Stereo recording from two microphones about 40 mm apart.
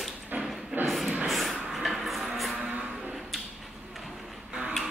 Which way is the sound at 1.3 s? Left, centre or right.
Centre.